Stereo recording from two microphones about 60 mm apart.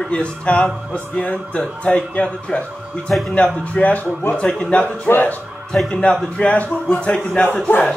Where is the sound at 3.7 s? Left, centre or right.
Left.